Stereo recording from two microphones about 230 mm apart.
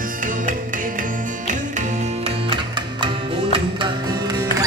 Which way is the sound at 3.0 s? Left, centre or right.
Right.